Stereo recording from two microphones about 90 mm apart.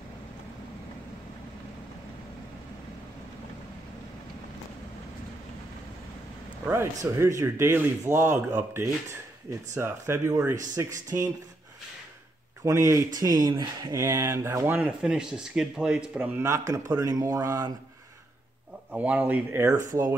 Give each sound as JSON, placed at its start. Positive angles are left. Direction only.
{"t": 6.6, "sound": "speech", "side_deg": -30}
{"t": 8.4, "sound": "speech", "side_deg": -20}
{"t": 12.6, "sound": "speech", "side_deg": -35}
{"t": 14.8, "sound": "speech", "side_deg": -10}
{"t": 16.2, "sound": "speech", "side_deg": -30}
{"t": 18.9, "sound": "speech", "side_deg": -15}
{"t": 19.6, "sound": "speech", "side_deg": -40}